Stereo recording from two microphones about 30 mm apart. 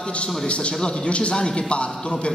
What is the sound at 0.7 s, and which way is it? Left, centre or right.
Speech, left.